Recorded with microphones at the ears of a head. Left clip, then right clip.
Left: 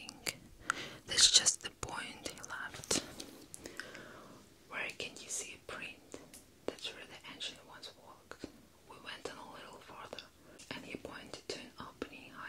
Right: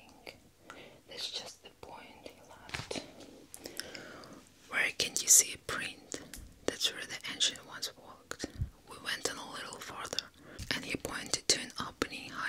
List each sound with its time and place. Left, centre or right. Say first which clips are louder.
0.0 s whispering: left 8 dB; left
4.6 s whispering: right 9 dB; right